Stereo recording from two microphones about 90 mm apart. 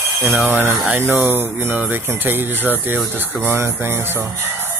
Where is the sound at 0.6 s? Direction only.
25° right (ahead or behind).